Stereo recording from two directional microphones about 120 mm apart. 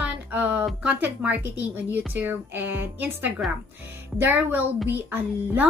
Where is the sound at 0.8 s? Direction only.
15° right (ahead or behind).